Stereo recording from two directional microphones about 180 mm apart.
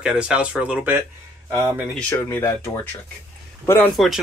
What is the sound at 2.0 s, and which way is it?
Speech, 10° left (ahead or behind).